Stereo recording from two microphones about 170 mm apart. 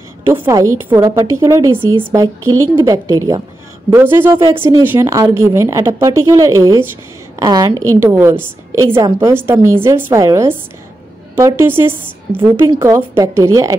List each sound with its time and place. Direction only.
0.3 s a woman's voice: 20° right (ahead or behind)
3.9 s a woman's voice: 15° right (ahead or behind)